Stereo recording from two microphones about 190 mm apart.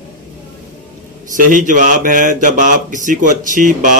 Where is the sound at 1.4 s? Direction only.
45° right (ahead or behind).